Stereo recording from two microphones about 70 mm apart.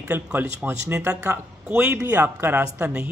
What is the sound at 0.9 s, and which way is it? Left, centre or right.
Speech, right.